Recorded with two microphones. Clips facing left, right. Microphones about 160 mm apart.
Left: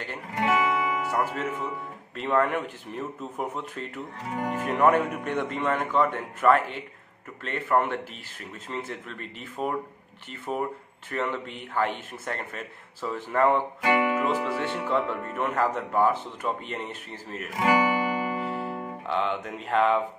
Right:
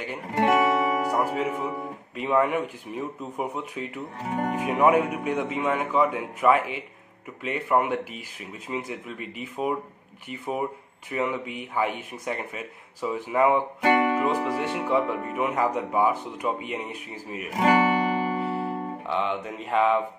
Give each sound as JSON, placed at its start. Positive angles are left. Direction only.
{"t": 0.5, "sound": "music", "side_deg": -35}
{"t": 1.1, "sound": "speech", "side_deg": -10}
{"t": 13.8, "sound": "music", "side_deg": -40}
{"t": 14.6, "sound": "speech", "side_deg": -10}
{"t": 17.6, "sound": "music", "side_deg": -30}
{"t": 19.0, "sound": "speech", "side_deg": -5}